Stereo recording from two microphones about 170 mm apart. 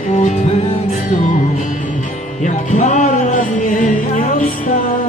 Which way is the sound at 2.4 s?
45° left (ahead or behind).